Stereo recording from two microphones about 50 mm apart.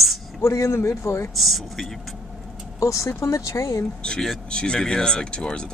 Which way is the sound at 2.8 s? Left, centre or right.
Left.